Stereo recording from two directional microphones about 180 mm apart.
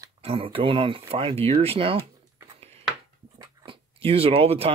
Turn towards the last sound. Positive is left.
turn(degrees=-35)  # may be behind; listen again after turning